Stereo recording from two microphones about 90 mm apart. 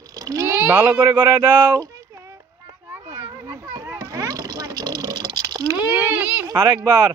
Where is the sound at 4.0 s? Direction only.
40° right (ahead or behind).